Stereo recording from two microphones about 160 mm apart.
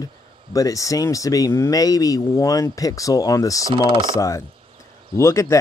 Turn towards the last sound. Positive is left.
turn(degrees=20)  # may be behind; listen again after turning